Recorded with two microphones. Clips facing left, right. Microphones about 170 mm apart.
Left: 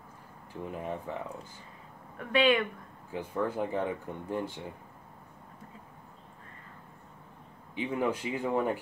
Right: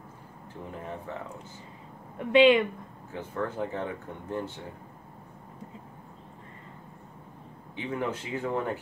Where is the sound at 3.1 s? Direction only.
15° left (ahead or behind).